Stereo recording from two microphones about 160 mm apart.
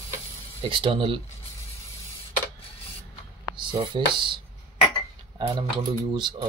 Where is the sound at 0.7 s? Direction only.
30° right (ahead or behind).